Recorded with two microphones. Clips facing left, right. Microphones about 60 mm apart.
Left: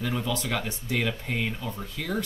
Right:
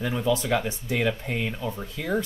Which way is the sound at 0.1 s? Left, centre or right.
Centre.